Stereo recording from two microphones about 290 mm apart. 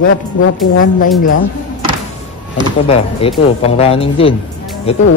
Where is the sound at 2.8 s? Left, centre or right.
Centre.